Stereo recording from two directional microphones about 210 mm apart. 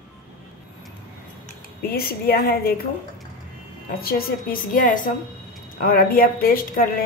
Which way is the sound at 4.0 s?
45° left (ahead or behind).